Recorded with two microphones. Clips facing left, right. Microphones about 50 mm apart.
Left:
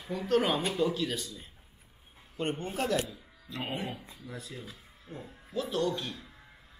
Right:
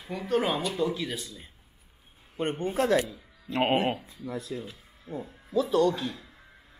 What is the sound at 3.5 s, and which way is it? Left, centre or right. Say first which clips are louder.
Speech: right 11 dB; right.